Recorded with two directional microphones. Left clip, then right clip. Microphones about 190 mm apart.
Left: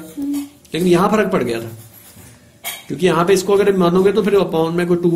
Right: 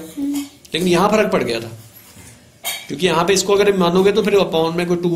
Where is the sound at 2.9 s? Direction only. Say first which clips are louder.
Left 2 dB; 50° left (ahead or behind).